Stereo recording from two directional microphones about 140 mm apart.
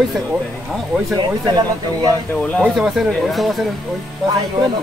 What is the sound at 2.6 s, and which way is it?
Speech, centre (ahead or behind).